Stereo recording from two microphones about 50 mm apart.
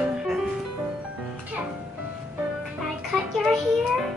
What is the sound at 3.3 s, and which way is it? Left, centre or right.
Speech, centre.